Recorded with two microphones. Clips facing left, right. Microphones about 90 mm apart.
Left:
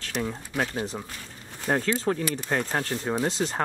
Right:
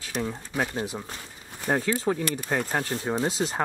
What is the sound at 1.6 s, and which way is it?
Speech, 10° right (ahead or behind).